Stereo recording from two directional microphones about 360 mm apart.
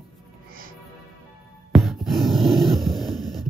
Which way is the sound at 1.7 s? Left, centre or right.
Centre.